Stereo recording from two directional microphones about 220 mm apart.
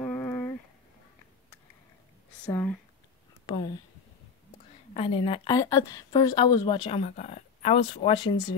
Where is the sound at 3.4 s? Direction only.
20° left (ahead or behind).